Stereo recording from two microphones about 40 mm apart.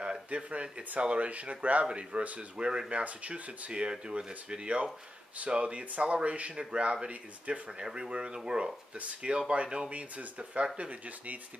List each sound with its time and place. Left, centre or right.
0.3 s speech: right
2.5 s speech: right
2.9 s speech: right
6.6 s speech: right
7.1 s speech: right
7.8 s speech: centre
9.0 s speech: right